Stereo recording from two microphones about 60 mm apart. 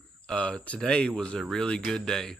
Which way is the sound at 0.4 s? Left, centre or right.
Centre.